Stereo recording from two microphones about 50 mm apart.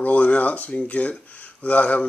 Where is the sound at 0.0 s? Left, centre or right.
Left.